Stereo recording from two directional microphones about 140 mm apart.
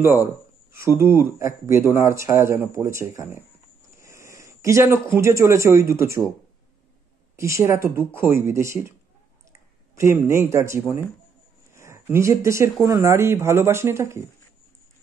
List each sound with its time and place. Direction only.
0.0 s speech: 15° right (ahead or behind)
7.3 s speech: 20° right (ahead or behind)
9.9 s speech: 20° right (ahead or behind)